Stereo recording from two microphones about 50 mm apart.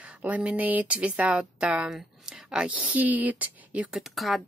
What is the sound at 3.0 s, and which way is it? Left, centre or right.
Speech, right.